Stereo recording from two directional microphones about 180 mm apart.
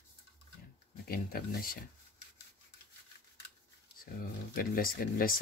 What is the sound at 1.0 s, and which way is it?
Speech, 55° left (ahead or behind).